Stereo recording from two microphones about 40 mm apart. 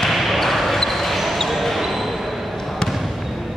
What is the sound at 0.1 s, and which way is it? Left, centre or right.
Basketball bounce, centre.